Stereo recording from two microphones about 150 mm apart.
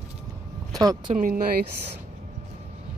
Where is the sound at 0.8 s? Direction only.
25° right (ahead or behind).